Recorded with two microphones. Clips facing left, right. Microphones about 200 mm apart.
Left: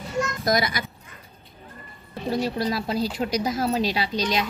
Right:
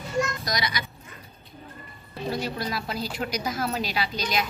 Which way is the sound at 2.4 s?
35° left (ahead or behind).